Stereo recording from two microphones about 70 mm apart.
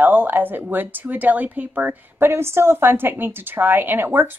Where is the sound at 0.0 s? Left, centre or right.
Right.